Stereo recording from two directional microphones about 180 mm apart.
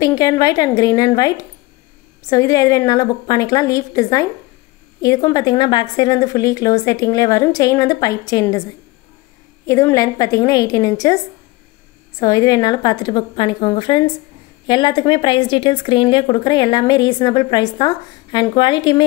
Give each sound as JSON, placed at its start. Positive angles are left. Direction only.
{"t": 0.0, "sound": "speech", "side_deg": 20}
{"t": 9.7, "sound": "speech", "side_deg": 15}
{"t": 12.2, "sound": "speech", "side_deg": 20}